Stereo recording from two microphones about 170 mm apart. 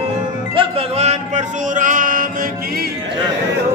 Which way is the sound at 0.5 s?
35° right (ahead or behind).